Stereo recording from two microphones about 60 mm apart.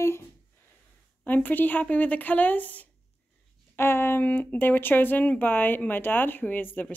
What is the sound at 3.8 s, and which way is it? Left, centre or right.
A woman's voice, left.